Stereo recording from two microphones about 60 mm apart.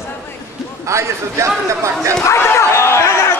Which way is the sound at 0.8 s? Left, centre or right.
Right.